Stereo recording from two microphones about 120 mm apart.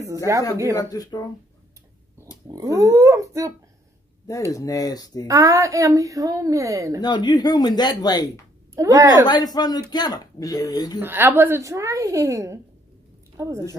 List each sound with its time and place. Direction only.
0.3 s a woman's voice: 25° right (ahead or behind)
0.8 s speech: 30° left (ahead or behind)
2.4 s a woman's voice: 30° right (ahead or behind)
4.5 s speech: 30° left (ahead or behind)
5.3 s a woman's voice: 25° right (ahead or behind)
7.0 s speech: 40° left (ahead or behind)
8.7 s a woman's voice: 25° right (ahead or behind)
9.2 s speech: 35° left (ahead or behind)
11.0 s a woman's voice: 15° right (ahead or behind)